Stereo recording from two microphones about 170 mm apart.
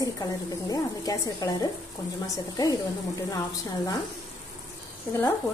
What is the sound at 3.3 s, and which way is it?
Speech, 20° left (ahead or behind).